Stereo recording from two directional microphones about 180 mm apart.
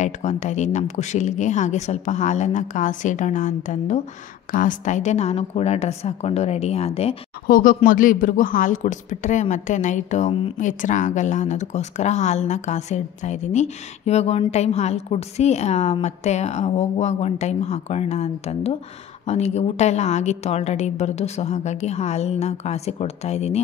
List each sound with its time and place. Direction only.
0.0 s a woman's voice: 40° left (ahead or behind)
7.4 s a woman's voice: 50° left (ahead or behind)